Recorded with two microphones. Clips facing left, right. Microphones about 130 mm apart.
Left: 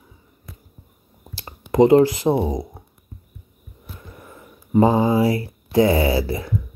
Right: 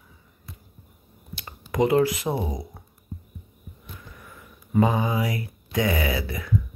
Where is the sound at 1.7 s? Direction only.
30° left (ahead or behind).